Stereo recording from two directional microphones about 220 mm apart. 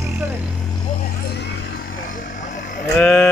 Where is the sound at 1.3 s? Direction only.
50° left (ahead or behind).